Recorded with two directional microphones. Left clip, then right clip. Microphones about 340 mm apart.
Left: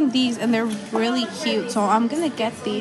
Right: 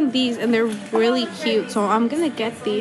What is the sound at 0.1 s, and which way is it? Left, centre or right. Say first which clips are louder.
A woman's voice: right 1 dB; centre.